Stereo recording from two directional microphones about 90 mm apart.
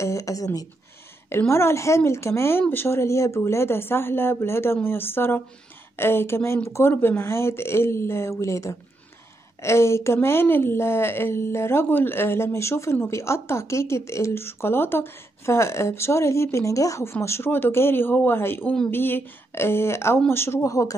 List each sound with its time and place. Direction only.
0.0 s speech: 35° left (ahead or behind)
1.5 s a woman's voice: 30° left (ahead or behind)